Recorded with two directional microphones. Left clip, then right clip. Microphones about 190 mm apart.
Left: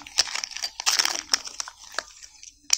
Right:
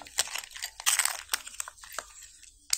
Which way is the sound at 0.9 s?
15° left (ahead or behind).